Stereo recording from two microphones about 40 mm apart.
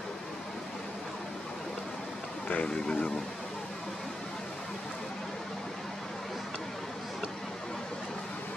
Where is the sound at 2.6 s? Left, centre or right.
Left.